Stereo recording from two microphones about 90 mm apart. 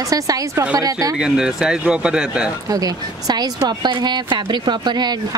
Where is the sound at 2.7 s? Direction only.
45° right (ahead or behind).